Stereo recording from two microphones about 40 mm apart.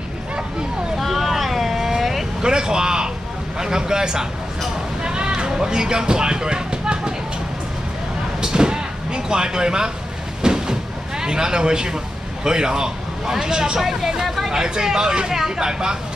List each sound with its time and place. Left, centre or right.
0.9 s vehicle: centre
2.4 s speech: centre
5.0 s a sound: right
8.4 s a sound: centre
12.4 s speech: centre
14.5 s speech: centre